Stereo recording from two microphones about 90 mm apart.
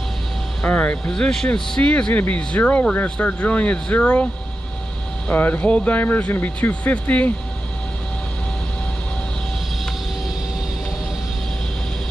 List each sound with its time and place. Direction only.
0.7 s speech: 15° left (ahead or behind)
5.3 s speech: 20° left (ahead or behind)